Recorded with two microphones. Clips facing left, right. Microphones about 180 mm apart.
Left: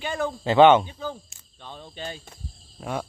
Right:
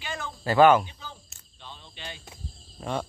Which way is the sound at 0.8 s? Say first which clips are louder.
Left 12 dB; 50° left (ahead or behind).